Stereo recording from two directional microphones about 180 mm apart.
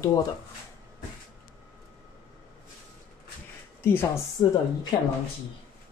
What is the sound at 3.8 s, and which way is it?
Speech, 15° left (ahead or behind).